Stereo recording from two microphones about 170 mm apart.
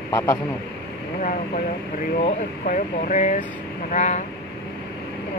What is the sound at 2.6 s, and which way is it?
Speech, 50° left (ahead or behind).